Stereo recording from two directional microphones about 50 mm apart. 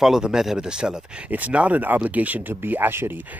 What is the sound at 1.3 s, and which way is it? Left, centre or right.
Speech, right.